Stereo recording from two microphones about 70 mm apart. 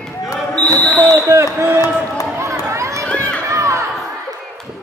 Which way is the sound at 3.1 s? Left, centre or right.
Right.